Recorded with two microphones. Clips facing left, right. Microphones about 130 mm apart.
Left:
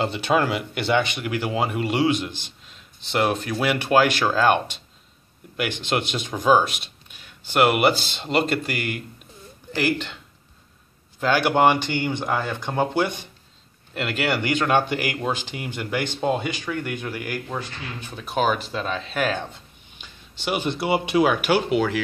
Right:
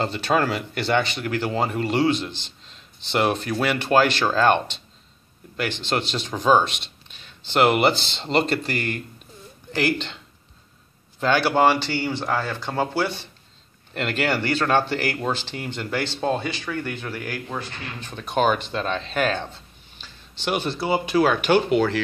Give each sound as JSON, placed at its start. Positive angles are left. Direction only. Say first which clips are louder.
{"t": 0.0, "sound": "speech", "louder": "left 1 dB", "side_deg": 10}
{"t": 11.1, "sound": "speech", "louder": "even", "side_deg": 5}
{"t": 11.4, "sound": "speech", "louder": "left 2 dB", "side_deg": 15}
{"t": 13.9, "sound": "speech", "louder": "right 1 dB", "side_deg": 5}
{"t": 20.0, "sound": "a sound", "louder": "right 1 dB", "side_deg": 10}
{"t": 20.7, "sound": "speech", "louder": "left 1 dB", "side_deg": 25}
{"t": 21.3, "sound": "speech", "louder": "right 2 dB", "side_deg": 10}